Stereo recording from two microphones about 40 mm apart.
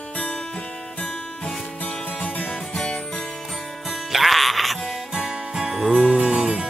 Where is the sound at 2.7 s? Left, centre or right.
Left.